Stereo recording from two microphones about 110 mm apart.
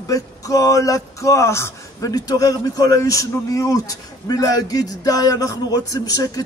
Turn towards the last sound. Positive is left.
turn(degrees=35)  # may be behind; listen again after turning